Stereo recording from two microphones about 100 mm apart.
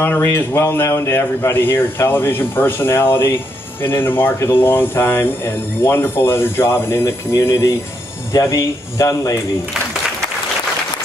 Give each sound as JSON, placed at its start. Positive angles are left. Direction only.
{"t": 0.0, "sound": "speech", "side_deg": 20}